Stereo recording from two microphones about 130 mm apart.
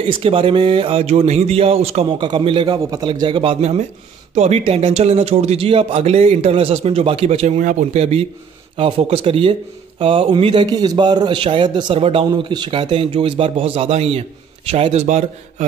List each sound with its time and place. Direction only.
0.0 s speech: 45° right (ahead or behind)
2.1 s speech: 40° right (ahead or behind)
4.4 s speech: 55° right (ahead or behind)
12.3 s speech: 35° right (ahead or behind); by 15.2 s 60° right (ahead or behind)